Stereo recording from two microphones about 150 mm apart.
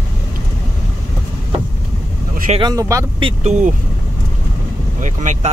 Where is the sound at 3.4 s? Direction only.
50° right (ahead or behind).